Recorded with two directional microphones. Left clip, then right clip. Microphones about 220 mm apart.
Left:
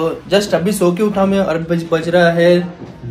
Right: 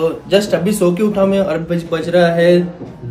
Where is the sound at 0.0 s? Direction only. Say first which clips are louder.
Right 1 dB; 5° right (ahead or behind).